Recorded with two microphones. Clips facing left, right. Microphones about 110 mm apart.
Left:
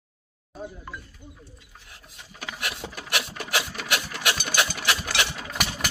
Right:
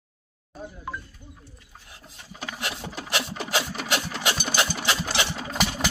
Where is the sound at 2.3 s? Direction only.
20° right (ahead or behind).